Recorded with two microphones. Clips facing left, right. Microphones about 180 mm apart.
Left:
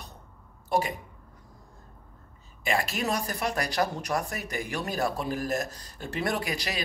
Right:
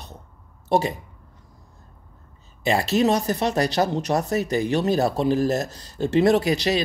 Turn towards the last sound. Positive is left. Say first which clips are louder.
# right 12 dB
turn(degrees=-25)  # may be behind; listen again after turning